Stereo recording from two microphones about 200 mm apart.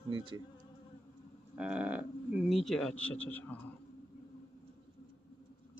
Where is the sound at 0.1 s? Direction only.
25° right (ahead or behind).